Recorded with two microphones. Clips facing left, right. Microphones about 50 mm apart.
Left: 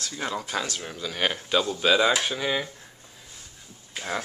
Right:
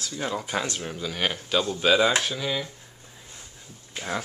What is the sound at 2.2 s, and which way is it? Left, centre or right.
Speech, centre.